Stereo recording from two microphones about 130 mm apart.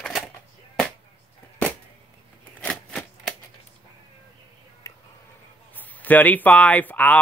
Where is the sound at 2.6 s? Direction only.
10° left (ahead or behind).